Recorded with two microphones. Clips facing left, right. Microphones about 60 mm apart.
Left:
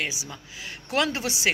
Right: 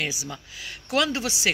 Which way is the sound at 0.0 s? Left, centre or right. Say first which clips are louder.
Right 1 dB; left.